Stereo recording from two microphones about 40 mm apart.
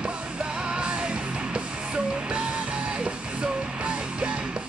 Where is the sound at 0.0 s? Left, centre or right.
Right.